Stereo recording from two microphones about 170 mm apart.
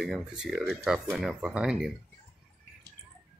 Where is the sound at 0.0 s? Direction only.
5° right (ahead or behind).